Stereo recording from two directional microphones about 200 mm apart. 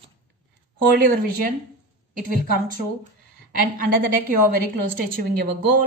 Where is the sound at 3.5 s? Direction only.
45° right (ahead or behind).